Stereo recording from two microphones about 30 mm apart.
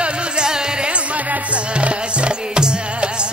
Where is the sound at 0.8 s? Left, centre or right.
Right.